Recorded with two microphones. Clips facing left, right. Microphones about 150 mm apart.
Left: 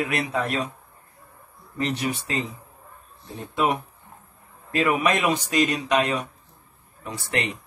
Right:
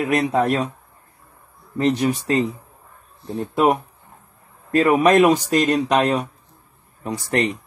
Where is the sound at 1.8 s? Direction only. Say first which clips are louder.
Right 7 dB; 35° right (ahead or behind).